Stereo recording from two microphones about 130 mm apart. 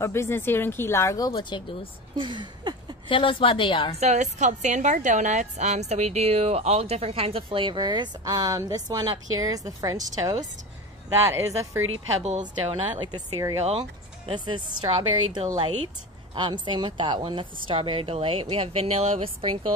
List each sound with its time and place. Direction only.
0.0 s speech: 20° left (ahead or behind); by 1.9 s 35° left (ahead or behind)
2.1 s a sound: 35° right (ahead or behind)
3.1 s a woman's voice: 40° left (ahead or behind)
4.0 s a woman's voice: 65° right (ahead or behind); by 9.9 s 25° right (ahead or behind)
11.2 s speech: 25° right (ahead or behind)
12.2 s a woman's voice: 60° right (ahead or behind)
13.0 s speech: 30° right (ahead or behind)
13.7 s a woman's voice: 45° right (ahead or behind)